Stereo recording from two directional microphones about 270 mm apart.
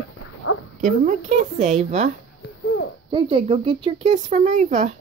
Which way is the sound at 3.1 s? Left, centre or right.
Right.